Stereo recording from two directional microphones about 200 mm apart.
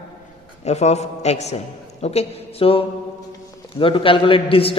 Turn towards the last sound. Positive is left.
turn(degrees=25)  # may be behind; listen again after turning